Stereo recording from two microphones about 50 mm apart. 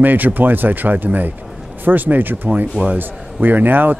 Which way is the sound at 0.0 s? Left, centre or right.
Right.